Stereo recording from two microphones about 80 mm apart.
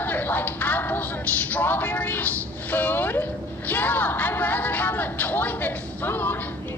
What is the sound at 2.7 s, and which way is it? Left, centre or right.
Speech, left.